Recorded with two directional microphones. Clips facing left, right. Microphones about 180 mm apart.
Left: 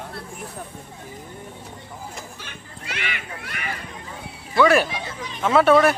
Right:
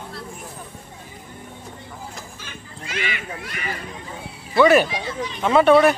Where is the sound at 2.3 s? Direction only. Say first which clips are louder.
Right 2 dB; 60° left (ahead or behind).